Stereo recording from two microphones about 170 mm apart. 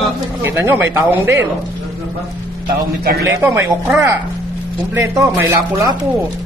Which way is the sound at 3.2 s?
15° right (ahead or behind).